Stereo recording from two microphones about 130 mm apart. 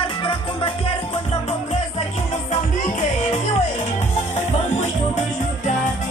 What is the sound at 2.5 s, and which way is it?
Music, 65° left (ahead or behind).